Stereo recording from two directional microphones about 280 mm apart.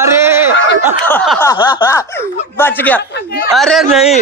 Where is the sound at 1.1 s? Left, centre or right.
Centre.